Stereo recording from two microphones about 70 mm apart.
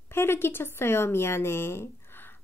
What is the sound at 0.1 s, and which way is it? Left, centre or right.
Speech, left.